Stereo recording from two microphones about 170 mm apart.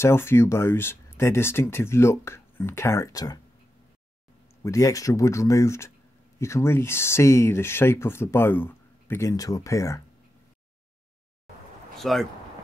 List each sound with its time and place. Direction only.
0.0 s speech: 15° left (ahead or behind)
4.6 s speech: 20° left (ahead or behind)
12.0 s speech: centre (ahead or behind)